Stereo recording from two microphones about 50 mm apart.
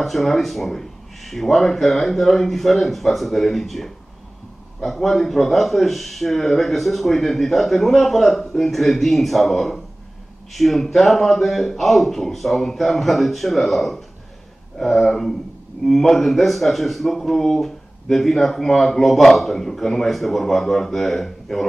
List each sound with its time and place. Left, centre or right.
0.0 s speech: centre